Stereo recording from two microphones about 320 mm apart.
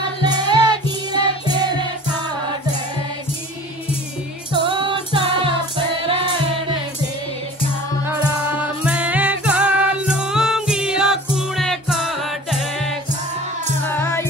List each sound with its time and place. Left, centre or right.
0.2 s music: centre
4.5 s music: centre
8.0 s music: centre